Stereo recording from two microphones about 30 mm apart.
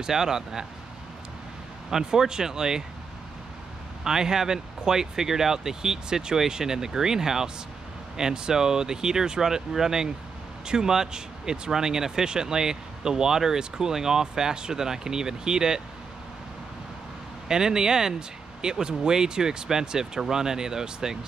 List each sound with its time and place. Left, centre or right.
0.0 s speech: centre
1.9 s speech: centre
4.0 s speech: centre
17.5 s speech: right